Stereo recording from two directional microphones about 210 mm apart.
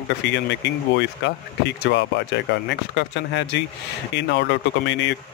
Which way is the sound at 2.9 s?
55° left (ahead or behind).